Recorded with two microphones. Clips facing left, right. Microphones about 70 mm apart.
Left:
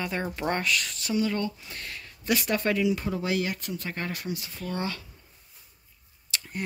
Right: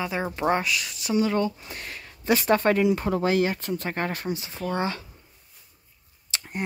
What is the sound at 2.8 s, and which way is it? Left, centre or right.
Speech, right.